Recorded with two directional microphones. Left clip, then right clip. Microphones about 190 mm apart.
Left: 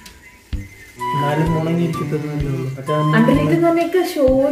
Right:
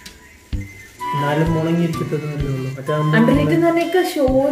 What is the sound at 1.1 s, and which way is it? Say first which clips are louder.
Music: even; 5° right (ahead or behind).